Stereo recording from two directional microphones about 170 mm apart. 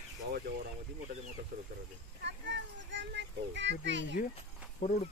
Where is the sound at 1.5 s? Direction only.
55° right (ahead or behind).